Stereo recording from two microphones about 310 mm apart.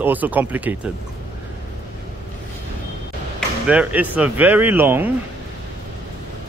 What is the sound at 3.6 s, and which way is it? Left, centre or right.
A man's voice, centre.